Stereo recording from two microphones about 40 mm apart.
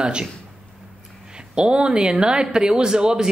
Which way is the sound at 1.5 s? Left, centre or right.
Right.